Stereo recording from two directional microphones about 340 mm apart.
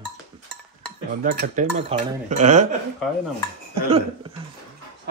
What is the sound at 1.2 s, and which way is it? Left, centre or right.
Speech, right.